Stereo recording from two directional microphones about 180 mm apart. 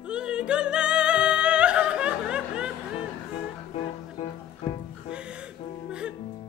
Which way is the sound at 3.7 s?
30° left (ahead or behind).